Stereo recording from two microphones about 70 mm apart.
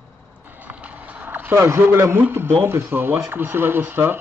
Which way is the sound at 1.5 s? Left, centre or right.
Right.